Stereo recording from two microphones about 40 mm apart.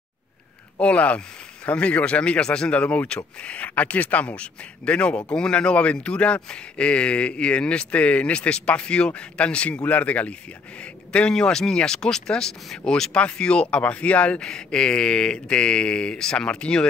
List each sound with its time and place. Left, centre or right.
0.7 s speech: left
2.7 s speech: left
14.4 s speech: centre